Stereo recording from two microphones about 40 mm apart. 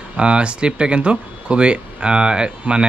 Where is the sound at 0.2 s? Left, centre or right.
Right.